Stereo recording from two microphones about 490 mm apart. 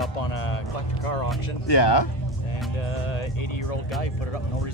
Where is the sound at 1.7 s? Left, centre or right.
Left.